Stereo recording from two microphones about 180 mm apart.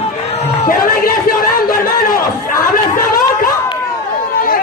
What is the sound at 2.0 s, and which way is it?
Chatter, 55° left (ahead or behind).